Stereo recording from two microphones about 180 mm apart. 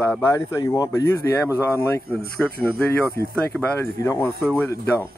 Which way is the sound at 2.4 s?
5° left (ahead or behind).